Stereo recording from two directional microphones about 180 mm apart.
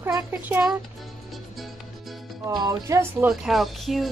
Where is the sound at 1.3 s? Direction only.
Centre (ahead or behind).